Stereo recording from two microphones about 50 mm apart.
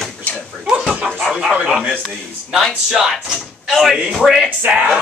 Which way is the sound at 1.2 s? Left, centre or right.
Centre.